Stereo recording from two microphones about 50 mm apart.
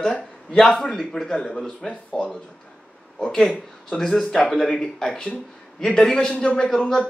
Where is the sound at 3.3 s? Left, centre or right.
Centre.